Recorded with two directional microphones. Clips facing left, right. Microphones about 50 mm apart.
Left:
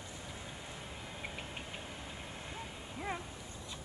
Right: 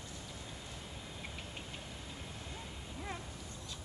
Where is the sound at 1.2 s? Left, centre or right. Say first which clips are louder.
Left 4 dB; left.